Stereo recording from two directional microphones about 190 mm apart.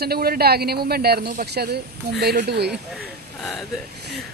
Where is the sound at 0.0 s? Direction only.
55° right (ahead or behind).